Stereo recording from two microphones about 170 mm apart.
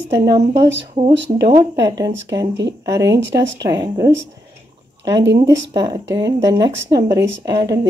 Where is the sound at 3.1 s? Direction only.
90° right.